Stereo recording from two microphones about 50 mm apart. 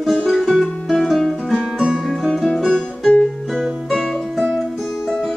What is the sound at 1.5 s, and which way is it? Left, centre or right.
Guitar, centre.